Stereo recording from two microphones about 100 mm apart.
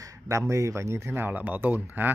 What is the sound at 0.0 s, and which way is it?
Speech, 35° right (ahead or behind).